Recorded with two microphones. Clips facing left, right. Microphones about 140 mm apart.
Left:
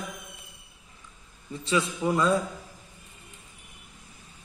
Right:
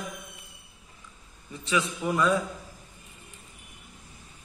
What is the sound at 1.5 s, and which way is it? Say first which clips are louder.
Speech: left 2 dB; 30° left (ahead or behind).